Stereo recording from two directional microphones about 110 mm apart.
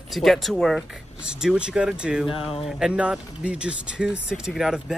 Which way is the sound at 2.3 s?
60° left (ahead or behind).